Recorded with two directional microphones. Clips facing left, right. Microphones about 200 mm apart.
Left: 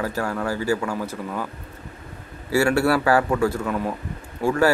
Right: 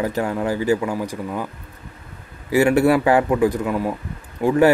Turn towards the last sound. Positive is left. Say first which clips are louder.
# right 4 dB
turn(degrees=-20)  # may be behind; listen again after turning